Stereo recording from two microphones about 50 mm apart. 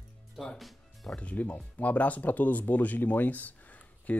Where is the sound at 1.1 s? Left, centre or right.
Left.